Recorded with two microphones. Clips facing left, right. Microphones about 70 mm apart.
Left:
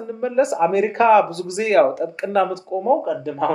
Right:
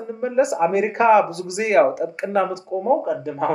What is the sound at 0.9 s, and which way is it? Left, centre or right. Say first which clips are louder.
Speech: left 1 dB; centre.